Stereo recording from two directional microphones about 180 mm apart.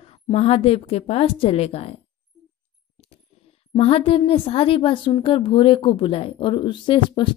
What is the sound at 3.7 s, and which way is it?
A woman's voice, 35° left (ahead or behind).